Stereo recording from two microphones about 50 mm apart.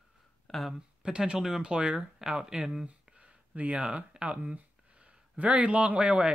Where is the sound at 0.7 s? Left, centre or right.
Centre.